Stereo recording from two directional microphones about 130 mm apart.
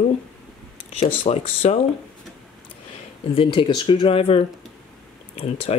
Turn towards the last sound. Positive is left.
turn(degrees=50)  # may be behind; listen again after turning